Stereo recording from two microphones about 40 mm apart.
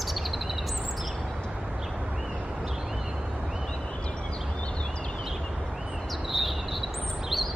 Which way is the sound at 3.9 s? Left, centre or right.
Left.